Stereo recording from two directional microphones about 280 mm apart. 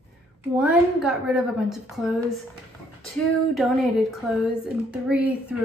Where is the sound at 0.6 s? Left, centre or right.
Centre.